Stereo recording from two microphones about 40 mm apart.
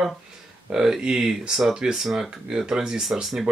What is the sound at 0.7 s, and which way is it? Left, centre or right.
Speech, centre.